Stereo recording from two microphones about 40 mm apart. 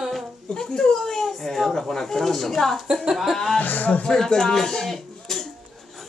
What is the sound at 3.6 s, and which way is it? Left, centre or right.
Speech, left.